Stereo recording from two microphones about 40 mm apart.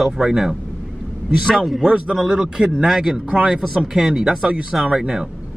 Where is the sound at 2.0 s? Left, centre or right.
Centre.